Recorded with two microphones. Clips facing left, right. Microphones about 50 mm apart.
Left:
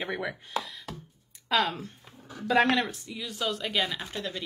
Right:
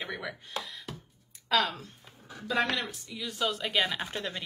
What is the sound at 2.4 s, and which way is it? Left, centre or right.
Speech, left.